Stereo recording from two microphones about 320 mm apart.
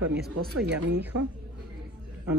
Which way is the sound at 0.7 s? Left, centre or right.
Right.